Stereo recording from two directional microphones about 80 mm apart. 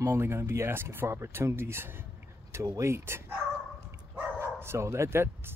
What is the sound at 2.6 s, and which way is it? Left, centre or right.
Speech, right.